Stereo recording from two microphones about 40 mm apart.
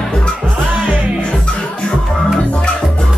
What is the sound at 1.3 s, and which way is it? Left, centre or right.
Music, left.